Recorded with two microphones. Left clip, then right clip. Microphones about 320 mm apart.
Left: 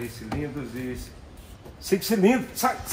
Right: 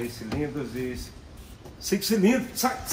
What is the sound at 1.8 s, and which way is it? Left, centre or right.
Speech, left.